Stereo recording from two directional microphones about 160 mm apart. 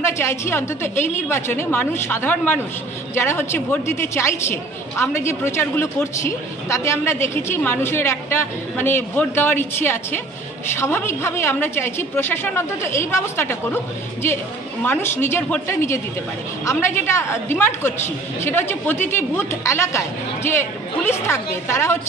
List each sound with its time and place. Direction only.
0.0 s a man's voice: 15° left (ahead or behind)